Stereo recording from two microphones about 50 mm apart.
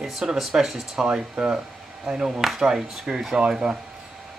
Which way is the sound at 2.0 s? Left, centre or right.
Centre.